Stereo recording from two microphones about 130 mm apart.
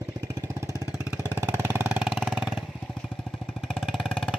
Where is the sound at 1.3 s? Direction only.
20° right (ahead or behind).